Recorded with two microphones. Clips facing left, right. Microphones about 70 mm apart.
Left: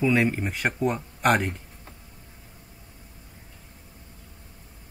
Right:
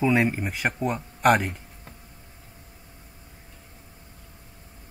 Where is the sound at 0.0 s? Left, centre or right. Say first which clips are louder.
Even; centre.